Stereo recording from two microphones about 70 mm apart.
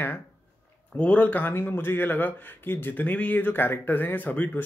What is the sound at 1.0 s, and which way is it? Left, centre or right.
Speech, centre.